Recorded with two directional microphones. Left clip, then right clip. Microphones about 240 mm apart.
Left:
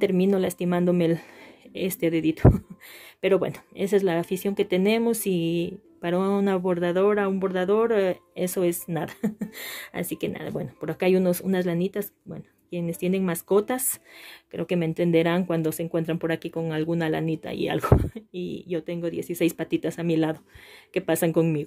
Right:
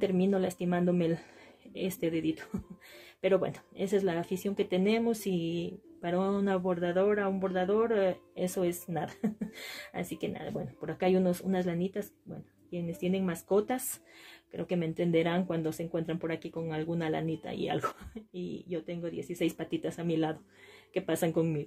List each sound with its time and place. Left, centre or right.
0.0 s speech: left